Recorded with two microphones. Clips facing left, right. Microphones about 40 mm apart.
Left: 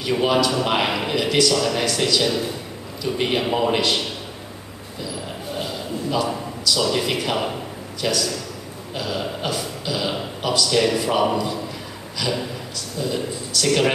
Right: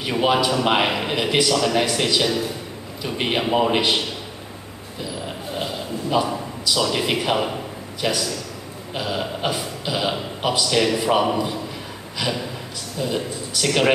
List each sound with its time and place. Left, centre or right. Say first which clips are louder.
0.2 s a man's voice: right 2 dB; right
5.6 s a sound: even; centre
7.0 s a man's voice: right 1 dB; centre
13.0 s a man's voice: right 1 dB; centre